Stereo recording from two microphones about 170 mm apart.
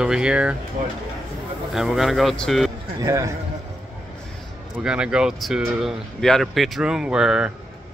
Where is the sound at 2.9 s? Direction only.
15° right (ahead or behind).